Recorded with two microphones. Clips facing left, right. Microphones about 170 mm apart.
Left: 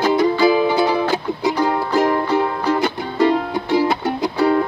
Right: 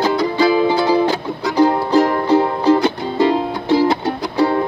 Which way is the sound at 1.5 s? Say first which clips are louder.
Right 8 dB; 25° right (ahead or behind).